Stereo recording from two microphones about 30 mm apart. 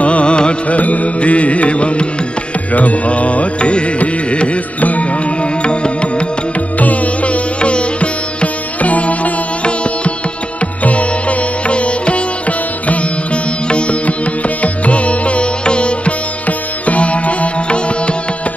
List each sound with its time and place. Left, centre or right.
0.0 s music: left
0.7 s music: left
2.7 s music: left
4.7 s music: left
5.6 s music: left
6.8 s music: left
7.6 s sitar: left
8.8 s music: left
10.8 s music: left
13.7 s music: left
16.1 s music: left